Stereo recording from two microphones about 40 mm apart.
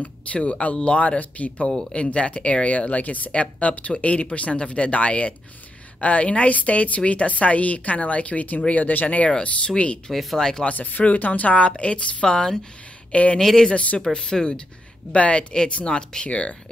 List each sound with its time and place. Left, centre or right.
0.0 s speech: left
10.1 s speech: centre
10.6 s speech: left; by 12.5 s centre
13.1 s speech: left
13.4 s speech: centre
13.7 s speech: left
14.0 s speech: centre
15.1 s speech: left
16.3 s speech: left